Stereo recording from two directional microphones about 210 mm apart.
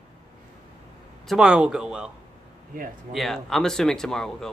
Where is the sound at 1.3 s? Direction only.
5° right (ahead or behind).